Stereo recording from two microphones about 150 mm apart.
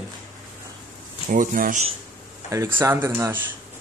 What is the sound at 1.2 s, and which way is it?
Speech, 65° right (ahead or behind).